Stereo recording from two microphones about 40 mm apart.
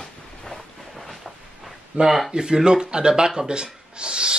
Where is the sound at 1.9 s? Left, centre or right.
Right.